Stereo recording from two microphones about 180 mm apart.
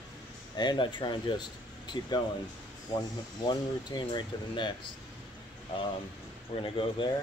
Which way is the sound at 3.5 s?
25° left (ahead or behind).